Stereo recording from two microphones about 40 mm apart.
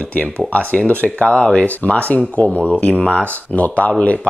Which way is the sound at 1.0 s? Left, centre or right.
Left.